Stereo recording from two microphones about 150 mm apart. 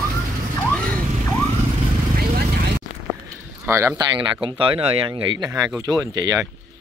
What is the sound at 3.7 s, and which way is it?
Speech, 15° right (ahead or behind).